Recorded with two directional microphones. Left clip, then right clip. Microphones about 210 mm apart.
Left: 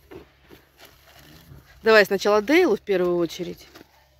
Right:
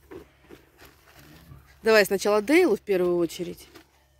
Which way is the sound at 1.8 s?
5° right (ahead or behind).